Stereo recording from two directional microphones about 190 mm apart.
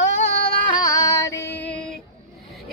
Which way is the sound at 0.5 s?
25° left (ahead or behind).